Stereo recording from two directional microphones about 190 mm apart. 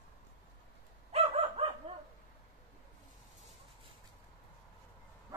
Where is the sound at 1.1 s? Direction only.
30° right (ahead or behind).